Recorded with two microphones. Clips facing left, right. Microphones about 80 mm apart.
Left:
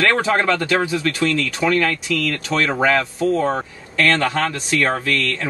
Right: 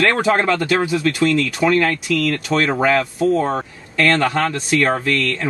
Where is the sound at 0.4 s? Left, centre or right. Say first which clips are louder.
Right 1 dB; right.